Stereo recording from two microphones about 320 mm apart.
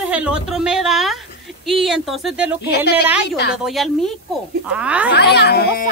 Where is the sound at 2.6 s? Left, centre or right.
Left.